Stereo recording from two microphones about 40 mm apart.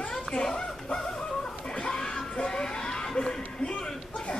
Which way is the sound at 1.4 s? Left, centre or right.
Left.